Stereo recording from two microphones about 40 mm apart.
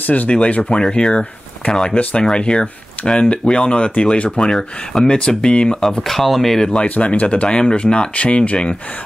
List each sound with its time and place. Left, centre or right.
0.0 s speech: left
0.7 s speech: left
6.0 s speech: centre
6.7 s speech: left